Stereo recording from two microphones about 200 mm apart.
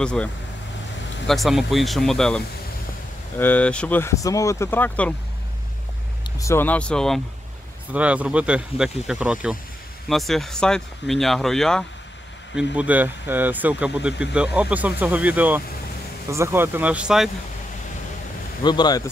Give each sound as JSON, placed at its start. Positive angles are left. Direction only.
{"t": 0.0, "sound": "speech", "side_deg": 5}
{"t": 6.4, "sound": "speech", "side_deg": 10}
{"t": 7.9, "sound": "speech", "side_deg": -5}
{"t": 18.6, "sound": "speech", "side_deg": 20}